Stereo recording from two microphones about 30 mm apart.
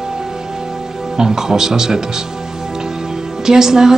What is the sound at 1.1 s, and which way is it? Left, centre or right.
A woman's voice, centre.